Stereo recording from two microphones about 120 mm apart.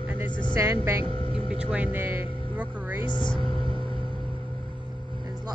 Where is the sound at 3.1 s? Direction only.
40° left (ahead or behind).